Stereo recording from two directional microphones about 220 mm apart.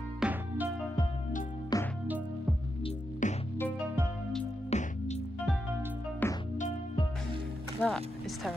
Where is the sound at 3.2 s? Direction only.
35° left (ahead or behind).